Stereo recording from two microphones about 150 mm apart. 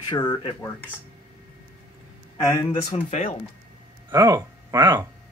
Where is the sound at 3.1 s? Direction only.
50° left (ahead or behind).